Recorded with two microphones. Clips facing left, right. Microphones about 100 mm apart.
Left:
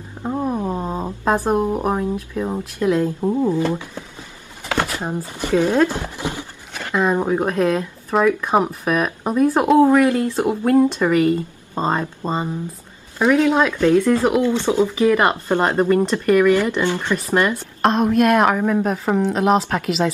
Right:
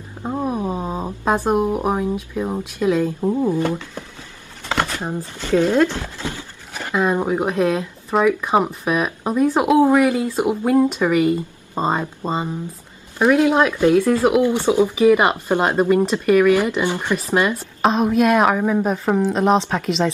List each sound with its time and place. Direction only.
0.2 s a sound: 5° right (ahead or behind)
1.6 s a woman's voice: 10° right (ahead or behind)
3.7 s speech: 15° left (ahead or behind)
6.7 s a woman's voice: 10° right (ahead or behind)
9.8 s speech: 15° right (ahead or behind)
13.2 s speech: 10° right (ahead or behind)
17.8 s a woman's voice: centre (ahead or behind)